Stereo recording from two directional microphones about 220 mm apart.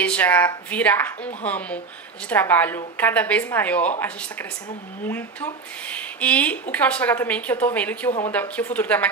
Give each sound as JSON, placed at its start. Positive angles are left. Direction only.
{"t": 0.0, "sound": "a woman's voice", "side_deg": 5}
{"t": 5.0, "sound": "a woman's voice", "side_deg": 10}